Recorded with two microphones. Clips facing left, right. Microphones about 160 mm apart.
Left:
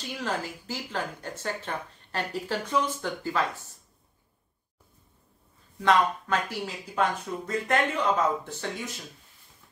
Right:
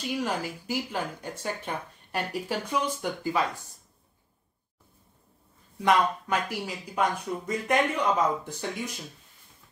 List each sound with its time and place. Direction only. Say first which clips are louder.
0.0 s speech: right 2 dB; 10° right (ahead or behind)
5.8 s speech: even; 15° right (ahead or behind)